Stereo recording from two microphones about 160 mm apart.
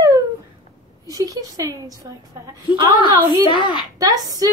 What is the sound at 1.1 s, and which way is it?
A woman's voice, 20° right (ahead or behind).